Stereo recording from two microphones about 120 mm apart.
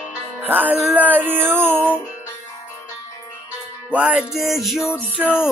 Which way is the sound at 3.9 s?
10° right (ahead or behind).